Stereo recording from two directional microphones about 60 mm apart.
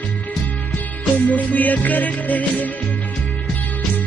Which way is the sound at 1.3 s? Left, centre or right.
Left.